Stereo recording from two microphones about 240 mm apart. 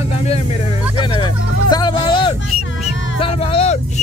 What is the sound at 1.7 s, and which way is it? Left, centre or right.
Music, centre.